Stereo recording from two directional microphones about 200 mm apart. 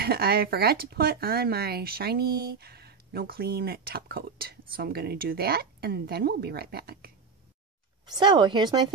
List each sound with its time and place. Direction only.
0.0 s speech: 50° right (ahead or behind)
8.2 s speech: 20° right (ahead or behind)